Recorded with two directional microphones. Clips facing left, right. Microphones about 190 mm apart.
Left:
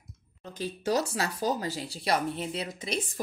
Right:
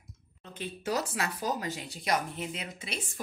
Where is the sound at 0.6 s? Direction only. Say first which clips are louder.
Left 4 dB; 30° left (ahead or behind).